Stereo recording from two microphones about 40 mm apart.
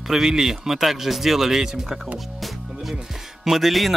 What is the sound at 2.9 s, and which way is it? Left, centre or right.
Speech, centre.